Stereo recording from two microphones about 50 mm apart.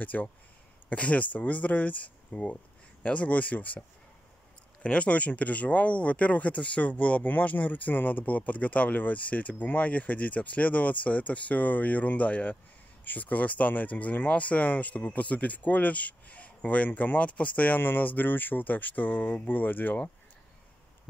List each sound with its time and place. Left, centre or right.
0.0 s speech: left
4.8 s speech: left